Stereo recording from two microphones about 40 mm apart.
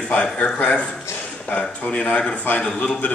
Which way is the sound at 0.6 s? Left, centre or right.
Left.